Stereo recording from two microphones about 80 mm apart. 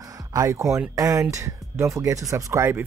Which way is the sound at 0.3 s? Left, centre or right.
Right.